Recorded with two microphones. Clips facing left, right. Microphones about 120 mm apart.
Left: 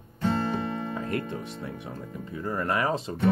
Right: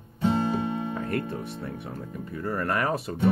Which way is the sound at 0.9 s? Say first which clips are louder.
Right 1 dB; 15° left (ahead or behind).